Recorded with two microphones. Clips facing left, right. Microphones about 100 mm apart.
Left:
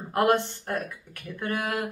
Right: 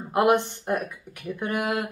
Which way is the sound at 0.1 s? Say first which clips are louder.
Right 2 dB; 15° right (ahead or behind).